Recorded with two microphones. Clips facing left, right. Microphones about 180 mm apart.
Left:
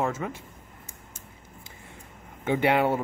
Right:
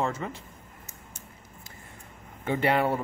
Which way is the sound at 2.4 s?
15° left (ahead or behind).